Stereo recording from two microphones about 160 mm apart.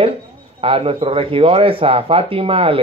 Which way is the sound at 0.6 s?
35° right (ahead or behind).